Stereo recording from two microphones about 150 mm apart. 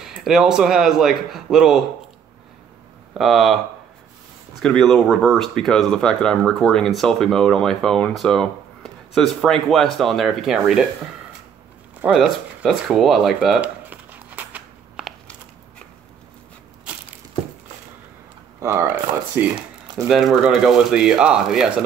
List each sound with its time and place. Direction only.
0.0 s speech: 5° right (ahead or behind)
3.2 s speech: centre (ahead or behind)
4.6 s speech: 5° left (ahead or behind)
12.0 s a sound: 5° right (ahead or behind)
18.6 s a sound: 20° right (ahead or behind)
20.1 s speech: 5° right (ahead or behind)